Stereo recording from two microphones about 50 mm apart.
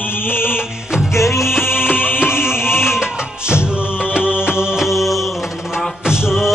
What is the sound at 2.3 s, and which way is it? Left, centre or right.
Music, left.